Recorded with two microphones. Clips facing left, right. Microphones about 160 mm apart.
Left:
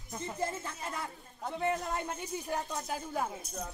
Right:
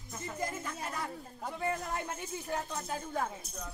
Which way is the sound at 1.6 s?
20° left (ahead or behind).